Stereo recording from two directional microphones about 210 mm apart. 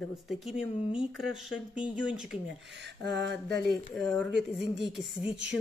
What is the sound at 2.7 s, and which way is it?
Speech, 55° right (ahead or behind).